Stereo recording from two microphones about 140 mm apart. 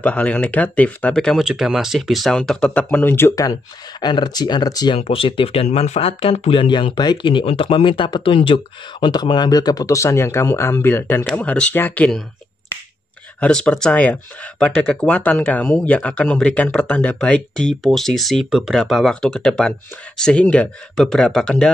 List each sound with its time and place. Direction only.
0.0 s speech: 10° left (ahead or behind); by 4.9 s 30° left (ahead or behind)
4.9 s speech: 40° left (ahead or behind); by 12.2 s 10° left (ahead or behind)
13.4 s speech: 5° left (ahead or behind)